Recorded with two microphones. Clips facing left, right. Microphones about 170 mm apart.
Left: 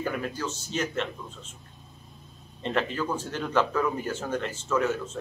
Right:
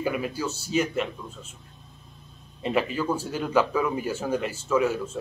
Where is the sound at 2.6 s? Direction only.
10° right (ahead or behind).